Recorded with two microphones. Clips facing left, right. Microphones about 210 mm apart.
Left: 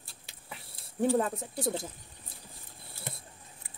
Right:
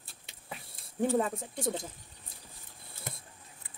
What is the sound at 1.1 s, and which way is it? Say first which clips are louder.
Speech: left 1 dB; centre (ahead or behind).